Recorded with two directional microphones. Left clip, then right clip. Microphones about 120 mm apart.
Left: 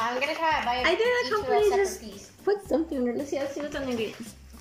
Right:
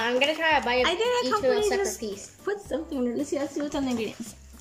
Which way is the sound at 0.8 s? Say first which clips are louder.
Left 1 dB; 5° right (ahead or behind).